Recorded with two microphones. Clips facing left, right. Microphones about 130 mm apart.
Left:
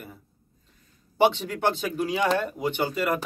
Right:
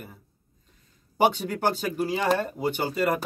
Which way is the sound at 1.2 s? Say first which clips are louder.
Left 1 dB; 40° right (ahead or behind).